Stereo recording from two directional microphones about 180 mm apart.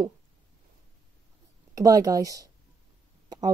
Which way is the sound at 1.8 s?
20° right (ahead or behind).